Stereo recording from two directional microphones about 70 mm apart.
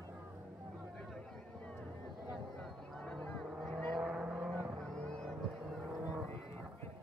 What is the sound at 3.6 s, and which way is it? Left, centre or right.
Vehicle, centre.